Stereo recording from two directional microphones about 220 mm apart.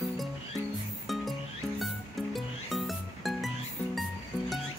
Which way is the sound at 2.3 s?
Centre (ahead or behind).